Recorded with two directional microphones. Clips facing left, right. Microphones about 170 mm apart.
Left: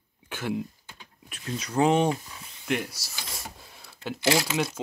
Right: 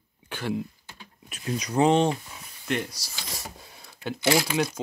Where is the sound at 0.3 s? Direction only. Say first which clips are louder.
Right 1 dB; centre (ahead or behind).